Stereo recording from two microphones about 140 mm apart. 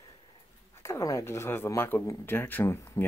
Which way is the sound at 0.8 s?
20° left (ahead or behind).